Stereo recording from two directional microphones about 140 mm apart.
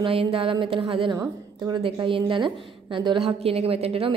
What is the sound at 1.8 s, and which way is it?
A woman's voice, 35° right (ahead or behind).